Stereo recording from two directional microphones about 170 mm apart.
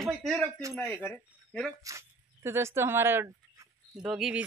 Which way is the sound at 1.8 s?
15° right (ahead or behind).